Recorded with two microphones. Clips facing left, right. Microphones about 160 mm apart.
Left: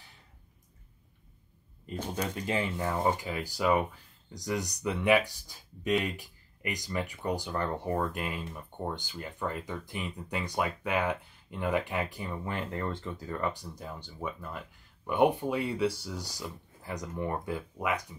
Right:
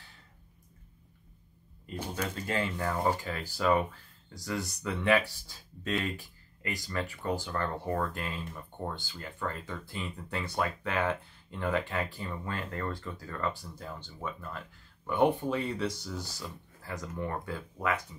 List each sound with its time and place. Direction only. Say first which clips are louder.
2.1 s speech: left 1 dB; 15° left (ahead or behind)